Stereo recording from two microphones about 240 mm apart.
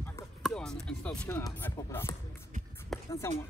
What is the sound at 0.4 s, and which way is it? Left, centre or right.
Speech, centre.